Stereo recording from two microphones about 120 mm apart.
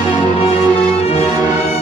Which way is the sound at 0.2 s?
55° left (ahead or behind).